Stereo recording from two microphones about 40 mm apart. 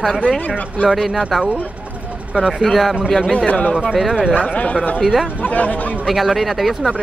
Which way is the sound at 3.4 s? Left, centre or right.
Left.